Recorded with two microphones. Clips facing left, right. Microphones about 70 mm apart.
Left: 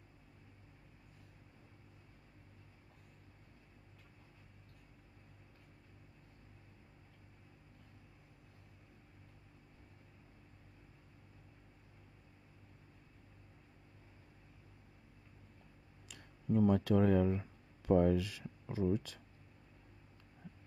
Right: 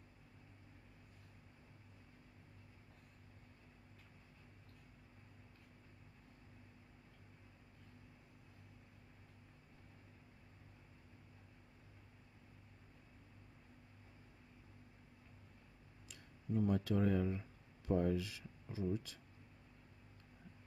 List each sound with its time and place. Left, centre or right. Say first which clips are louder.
16.1 s speech: left 7 dB; left